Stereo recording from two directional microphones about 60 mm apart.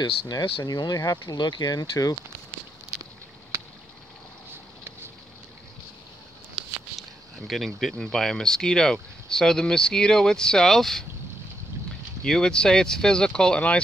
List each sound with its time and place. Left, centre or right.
0.3 s speech: left
7.0 s speech: centre
12.2 s speech: centre